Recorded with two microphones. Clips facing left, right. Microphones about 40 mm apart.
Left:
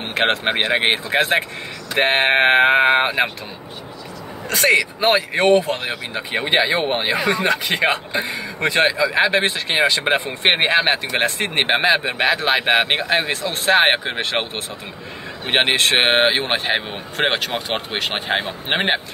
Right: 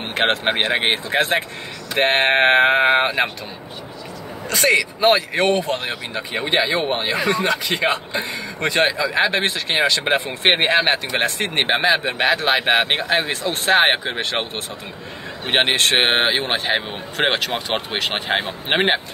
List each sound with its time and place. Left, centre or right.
0.1 s speech: centre
4.6 s speech: centre
6.3 s speech: left
8.8 s speech: centre
10.4 s speech: centre
15.4 s speech: centre